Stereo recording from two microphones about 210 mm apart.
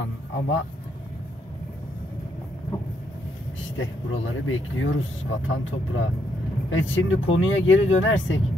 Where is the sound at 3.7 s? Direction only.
70° left (ahead or behind).